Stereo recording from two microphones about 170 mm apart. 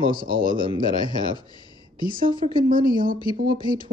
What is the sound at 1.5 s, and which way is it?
Speech, 25° left (ahead or behind).